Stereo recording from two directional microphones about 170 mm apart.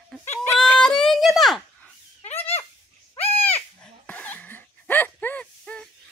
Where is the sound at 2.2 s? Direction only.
35° left (ahead or behind).